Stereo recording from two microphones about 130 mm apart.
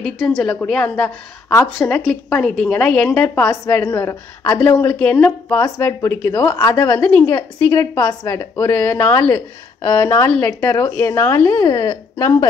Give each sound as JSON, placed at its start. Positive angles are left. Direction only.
{"t": 0.7, "sound": "a woman's voice", "side_deg": 10}
{"t": 1.5, "sound": "a woman's voice", "side_deg": 20}
{"t": 1.9, "sound": "a woman's voice", "side_deg": 5}
{"t": 6.4, "sound": "a woman's voice", "side_deg": 30}
{"t": 6.7, "sound": "a woman's voice", "side_deg": 20}